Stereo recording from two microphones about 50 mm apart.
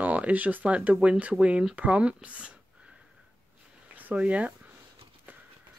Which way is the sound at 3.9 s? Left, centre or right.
Right.